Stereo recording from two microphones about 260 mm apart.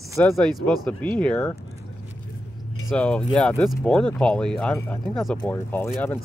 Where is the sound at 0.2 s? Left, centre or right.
Centre.